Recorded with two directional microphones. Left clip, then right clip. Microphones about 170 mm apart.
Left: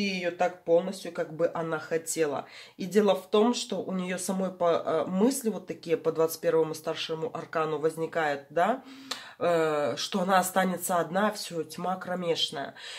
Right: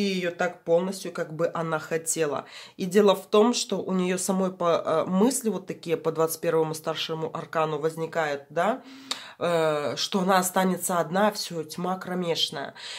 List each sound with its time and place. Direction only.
0.0 s speech: 30° right (ahead or behind)